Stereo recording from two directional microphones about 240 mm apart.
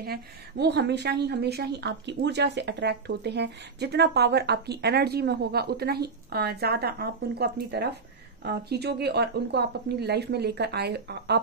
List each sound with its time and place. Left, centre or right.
0.0 s speech: right